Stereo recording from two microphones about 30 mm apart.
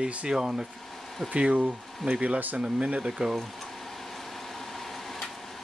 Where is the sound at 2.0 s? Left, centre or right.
Right.